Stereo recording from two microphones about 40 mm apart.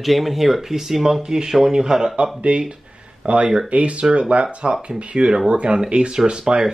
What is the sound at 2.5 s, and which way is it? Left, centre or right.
Speech, right.